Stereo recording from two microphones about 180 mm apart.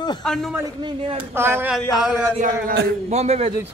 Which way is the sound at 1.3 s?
10° right (ahead or behind).